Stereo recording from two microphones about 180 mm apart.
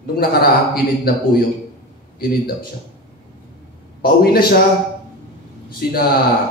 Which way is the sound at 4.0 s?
55° left (ahead or behind).